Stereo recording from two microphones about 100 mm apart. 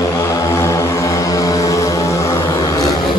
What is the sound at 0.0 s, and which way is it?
Vehicle, 30° left (ahead or behind).